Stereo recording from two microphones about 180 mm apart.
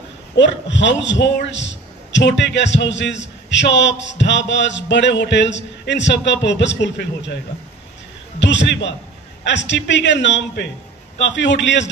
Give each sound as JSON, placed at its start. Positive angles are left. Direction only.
{"t": 0.4, "sound": "a man's voice", "side_deg": 85}
{"t": 8.4, "sound": "a man's voice", "side_deg": 90}